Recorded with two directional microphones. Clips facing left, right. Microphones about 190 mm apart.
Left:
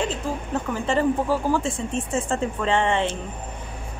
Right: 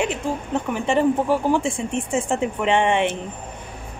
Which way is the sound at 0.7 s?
20° right (ahead or behind).